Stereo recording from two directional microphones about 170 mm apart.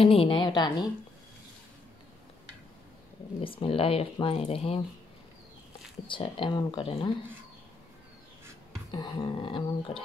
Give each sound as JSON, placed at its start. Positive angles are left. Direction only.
{"t": 0.0, "sound": "speech", "side_deg": 35}
{"t": 3.3, "sound": "speech", "side_deg": 35}
{"t": 6.0, "sound": "speech", "side_deg": 30}
{"t": 8.9, "sound": "speech", "side_deg": 25}